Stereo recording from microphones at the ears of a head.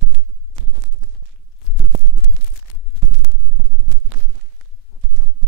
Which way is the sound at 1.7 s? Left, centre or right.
Right.